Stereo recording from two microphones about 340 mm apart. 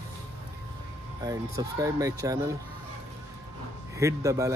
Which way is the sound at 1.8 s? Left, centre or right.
Centre.